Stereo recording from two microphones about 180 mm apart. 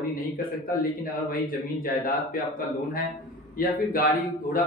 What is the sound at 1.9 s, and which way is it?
Speech, 50° left (ahead or behind).